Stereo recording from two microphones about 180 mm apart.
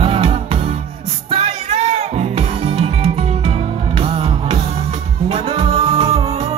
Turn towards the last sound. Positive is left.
turn(degrees=-30)  # may be behind; listen again after turning